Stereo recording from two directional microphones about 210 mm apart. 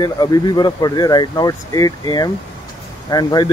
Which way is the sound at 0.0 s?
20° left (ahead or behind).